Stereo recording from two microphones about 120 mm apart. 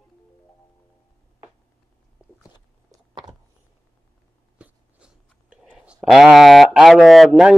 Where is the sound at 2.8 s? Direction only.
35° right (ahead or behind).